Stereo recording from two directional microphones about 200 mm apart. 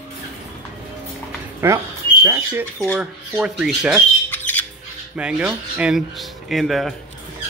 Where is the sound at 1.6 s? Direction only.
10° right (ahead or behind).